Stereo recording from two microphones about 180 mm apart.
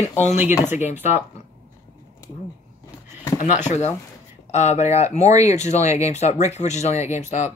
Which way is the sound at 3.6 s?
40° left (ahead or behind).